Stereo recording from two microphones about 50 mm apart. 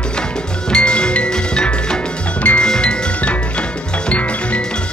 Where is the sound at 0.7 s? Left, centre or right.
Left.